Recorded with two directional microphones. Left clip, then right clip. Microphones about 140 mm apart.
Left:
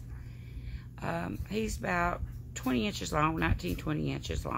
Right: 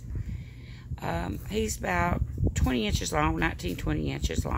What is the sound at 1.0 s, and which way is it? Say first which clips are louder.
Speech: right 3 dB; 40° right (ahead or behind).